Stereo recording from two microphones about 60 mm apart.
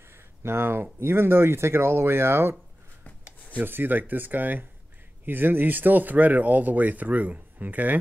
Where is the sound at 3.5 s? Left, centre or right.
Right.